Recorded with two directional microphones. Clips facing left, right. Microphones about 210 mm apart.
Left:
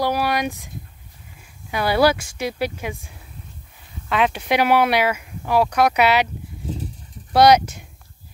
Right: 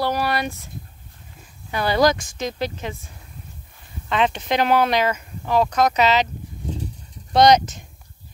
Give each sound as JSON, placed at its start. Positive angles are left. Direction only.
{"t": 0.0, "sound": "speech", "side_deg": 10}
{"t": 4.1, "sound": "speech", "side_deg": 5}
{"t": 7.3, "sound": "speech", "side_deg": 10}